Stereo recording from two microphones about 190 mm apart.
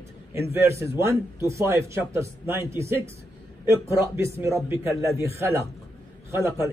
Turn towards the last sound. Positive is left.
turn(degrees=-15)  # may be behind; listen again after turning